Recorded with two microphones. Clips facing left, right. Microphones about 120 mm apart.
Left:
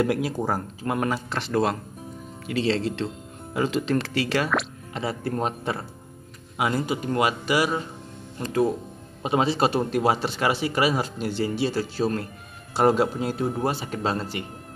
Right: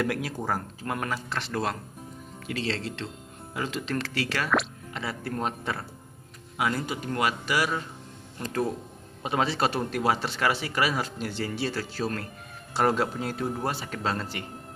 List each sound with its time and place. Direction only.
0.0 s speech: 25° left (ahead or behind)
9.2 s speech: 20° left (ahead or behind)